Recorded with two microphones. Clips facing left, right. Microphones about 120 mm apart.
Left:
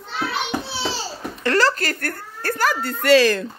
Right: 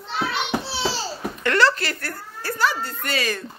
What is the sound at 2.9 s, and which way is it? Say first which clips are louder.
Speech: left 11 dB; 85° left.